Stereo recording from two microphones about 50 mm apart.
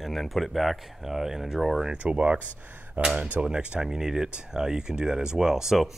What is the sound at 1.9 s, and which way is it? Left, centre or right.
Speech, right.